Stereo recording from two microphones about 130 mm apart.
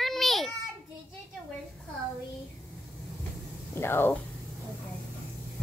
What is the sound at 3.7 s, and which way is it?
Speech, 15° left (ahead or behind).